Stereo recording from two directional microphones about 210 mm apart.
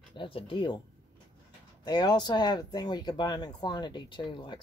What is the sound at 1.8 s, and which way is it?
Speech, 20° left (ahead or behind).